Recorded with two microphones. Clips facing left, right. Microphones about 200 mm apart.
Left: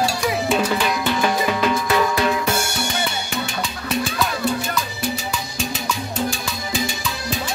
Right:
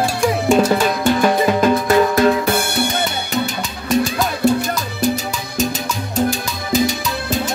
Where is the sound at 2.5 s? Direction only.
55° right (ahead or behind).